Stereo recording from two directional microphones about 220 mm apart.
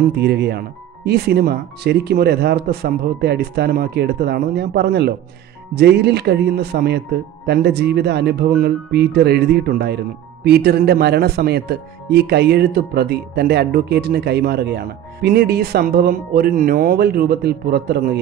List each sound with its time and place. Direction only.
0.1 s a man's voice: 50° right (ahead or behind)